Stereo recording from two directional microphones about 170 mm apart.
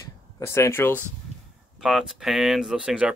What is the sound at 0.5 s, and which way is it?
Speech, 15° left (ahead or behind).